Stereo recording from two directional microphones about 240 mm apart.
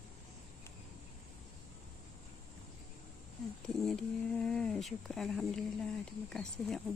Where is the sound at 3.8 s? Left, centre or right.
Centre.